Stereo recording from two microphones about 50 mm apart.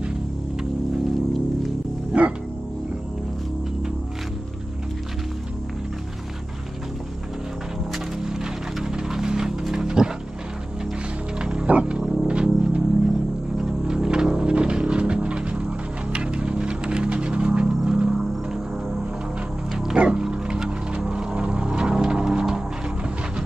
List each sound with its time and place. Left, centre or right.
2.1 s music: right
7.9 s music: centre
11.3 s music: centre
11.6 s wild animals: right
12.0 s music: centre
12.3 s music: right
19.7 s music: centre